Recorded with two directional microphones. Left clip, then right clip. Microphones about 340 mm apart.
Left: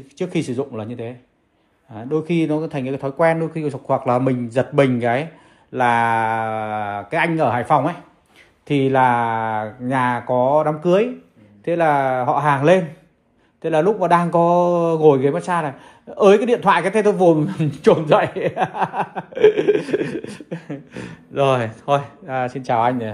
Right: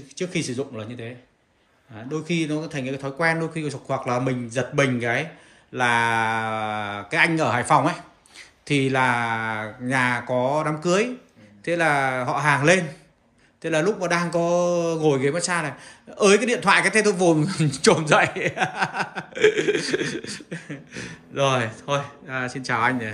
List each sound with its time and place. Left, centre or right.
0.1 s speech: centre